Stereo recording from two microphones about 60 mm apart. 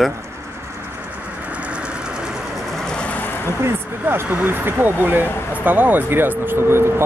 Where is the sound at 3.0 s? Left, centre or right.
Left.